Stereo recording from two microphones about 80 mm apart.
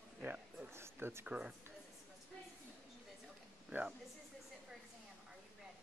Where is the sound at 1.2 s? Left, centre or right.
Centre.